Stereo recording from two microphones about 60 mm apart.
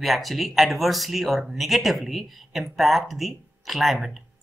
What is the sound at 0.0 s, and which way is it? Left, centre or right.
Speech, centre.